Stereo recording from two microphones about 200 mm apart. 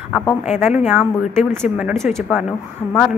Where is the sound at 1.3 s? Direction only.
10° right (ahead or behind).